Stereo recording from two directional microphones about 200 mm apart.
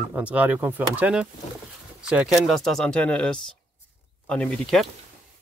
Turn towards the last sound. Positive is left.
turn(degrees=0)  # may be behind; listen again after turning